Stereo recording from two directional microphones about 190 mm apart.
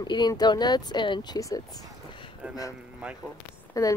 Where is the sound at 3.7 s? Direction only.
20° left (ahead or behind).